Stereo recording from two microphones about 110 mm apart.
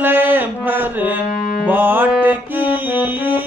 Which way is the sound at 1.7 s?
20° right (ahead or behind).